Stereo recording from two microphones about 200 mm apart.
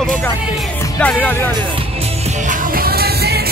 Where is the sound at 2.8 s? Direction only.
50° right (ahead or behind).